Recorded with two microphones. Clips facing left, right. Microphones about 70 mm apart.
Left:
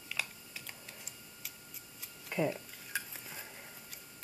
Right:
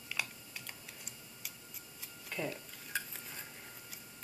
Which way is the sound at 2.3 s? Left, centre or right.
Centre.